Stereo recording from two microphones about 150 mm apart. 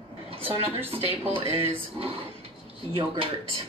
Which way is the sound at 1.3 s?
40° right (ahead or behind).